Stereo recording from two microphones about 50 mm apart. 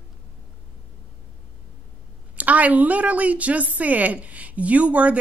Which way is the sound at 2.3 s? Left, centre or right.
Right.